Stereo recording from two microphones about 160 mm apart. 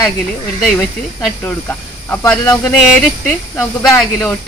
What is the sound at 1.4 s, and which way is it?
Speech, 15° left (ahead or behind).